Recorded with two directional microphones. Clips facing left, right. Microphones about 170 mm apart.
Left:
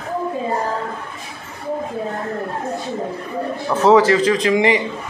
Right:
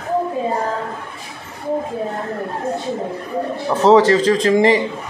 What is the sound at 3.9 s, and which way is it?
Speech, 35° right (ahead or behind).